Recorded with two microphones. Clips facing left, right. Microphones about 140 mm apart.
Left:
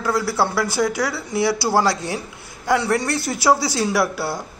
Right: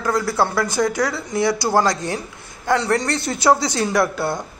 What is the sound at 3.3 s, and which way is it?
Speech, 20° right (ahead or behind).